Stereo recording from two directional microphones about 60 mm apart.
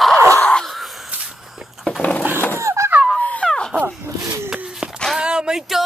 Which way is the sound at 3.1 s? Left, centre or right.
Left.